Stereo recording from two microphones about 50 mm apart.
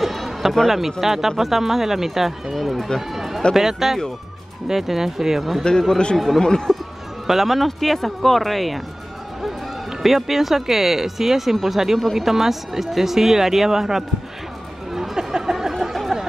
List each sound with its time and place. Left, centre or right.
0.0 s music: centre
0.7 s speech: centre
5.6 s speech: centre
6.1 s speech: centre
6.4 s speech: centre
7.2 s speech: centre
10.0 s speech: centre
14.9 s a sound: centre